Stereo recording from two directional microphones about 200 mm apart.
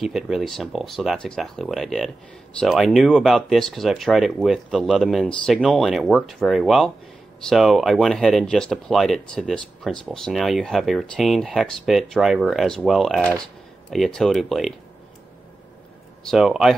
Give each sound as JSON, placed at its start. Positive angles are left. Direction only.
{"t": 0.0, "sound": "speech", "side_deg": 0}
{"t": 16.3, "sound": "speech", "side_deg": 0}